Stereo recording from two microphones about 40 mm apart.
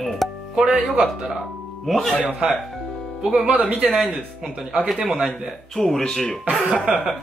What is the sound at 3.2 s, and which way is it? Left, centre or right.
Speech, centre.